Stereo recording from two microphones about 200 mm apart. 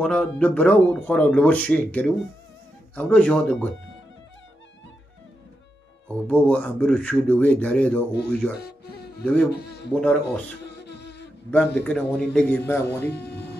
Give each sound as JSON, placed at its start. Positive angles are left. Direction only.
{"t": 0.0, "sound": "speech", "side_deg": 5}
{"t": 6.2, "sound": "speech", "side_deg": 5}
{"t": 8.1, "sound": "speech", "side_deg": 55}
{"t": 9.2, "sound": "speech", "side_deg": 5}
{"t": 9.5, "sound": "speech", "side_deg": 55}
{"t": 10.8, "sound": "music", "side_deg": 55}
{"t": 11.5, "sound": "speech", "side_deg": 5}